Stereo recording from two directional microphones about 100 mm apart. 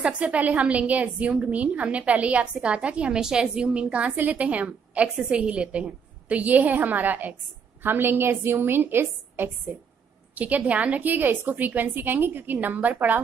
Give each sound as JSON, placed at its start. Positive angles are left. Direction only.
{"t": 0.0, "sound": "a woman's voice", "side_deg": -15}